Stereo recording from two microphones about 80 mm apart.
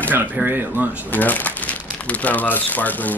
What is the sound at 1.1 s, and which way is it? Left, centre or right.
Speech, left.